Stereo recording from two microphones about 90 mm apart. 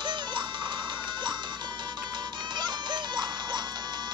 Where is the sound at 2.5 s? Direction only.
55° right (ahead or behind).